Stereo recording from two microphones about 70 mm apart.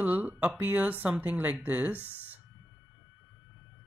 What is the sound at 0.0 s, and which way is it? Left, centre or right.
Speech, right.